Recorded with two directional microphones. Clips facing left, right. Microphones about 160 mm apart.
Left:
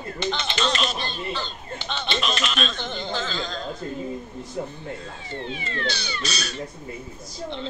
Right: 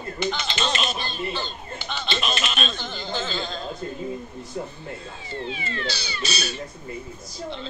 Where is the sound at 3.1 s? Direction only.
25° right (ahead or behind).